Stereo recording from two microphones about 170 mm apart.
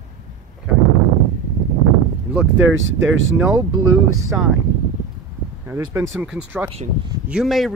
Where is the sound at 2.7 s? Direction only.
90° right.